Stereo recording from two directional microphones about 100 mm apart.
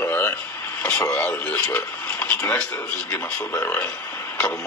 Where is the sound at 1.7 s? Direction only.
25° left (ahead or behind).